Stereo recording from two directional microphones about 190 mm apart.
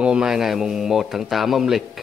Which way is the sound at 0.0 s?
5° right (ahead or behind).